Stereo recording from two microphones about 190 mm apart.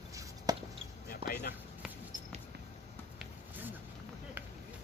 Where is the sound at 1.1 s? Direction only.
50° left (ahead or behind).